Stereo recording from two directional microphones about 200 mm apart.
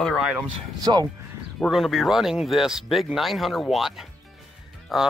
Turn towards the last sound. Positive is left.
turn(degrees=0)  # may be behind; listen again after turning